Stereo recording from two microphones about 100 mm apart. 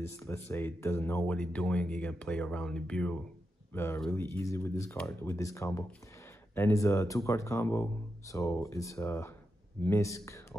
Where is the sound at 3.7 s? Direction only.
25° left (ahead or behind).